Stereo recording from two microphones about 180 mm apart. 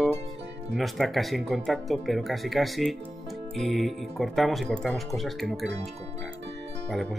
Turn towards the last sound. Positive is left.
turn(degrees=0)  # may be behind; listen again after turning